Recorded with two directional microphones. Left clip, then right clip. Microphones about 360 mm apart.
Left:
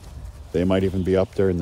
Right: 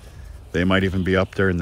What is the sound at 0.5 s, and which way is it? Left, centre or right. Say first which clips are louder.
Speech: right 1 dB; right.